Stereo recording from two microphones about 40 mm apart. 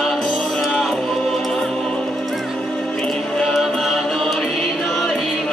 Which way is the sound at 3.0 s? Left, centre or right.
Centre.